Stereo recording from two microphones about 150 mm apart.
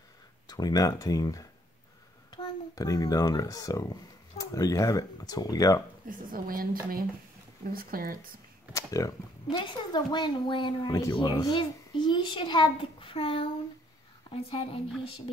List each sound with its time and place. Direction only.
0.5 s a child's voice: 25° left (ahead or behind)
6.0 s a woman's voice: 70° right (ahead or behind)
8.7 s a child's voice: 20° left (ahead or behind)